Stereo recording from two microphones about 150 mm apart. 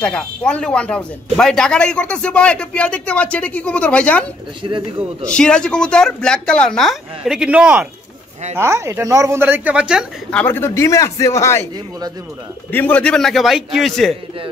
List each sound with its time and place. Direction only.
0.0 s speech: 5° left (ahead or behind)
4.6 s a man's voice: 35° right (ahead or behind)
5.2 s speech: 5° left (ahead or behind)
10.3 s a man's voice: 15° left (ahead or behind)
12.7 s speech: 10° left (ahead or behind)